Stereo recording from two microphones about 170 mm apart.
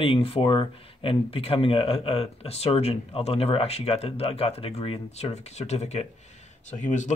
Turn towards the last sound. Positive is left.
turn(degrees=45)  # may be behind; listen again after turning